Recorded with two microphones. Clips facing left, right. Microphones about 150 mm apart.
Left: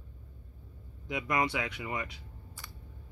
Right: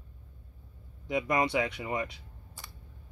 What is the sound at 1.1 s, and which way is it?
Speech, 25° right (ahead or behind).